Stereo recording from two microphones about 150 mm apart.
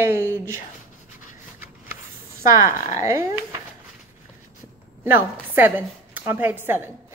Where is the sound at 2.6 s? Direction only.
20° right (ahead or behind).